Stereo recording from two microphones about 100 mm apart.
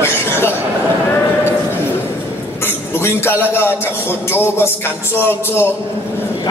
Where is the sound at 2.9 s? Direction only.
25° left (ahead or behind).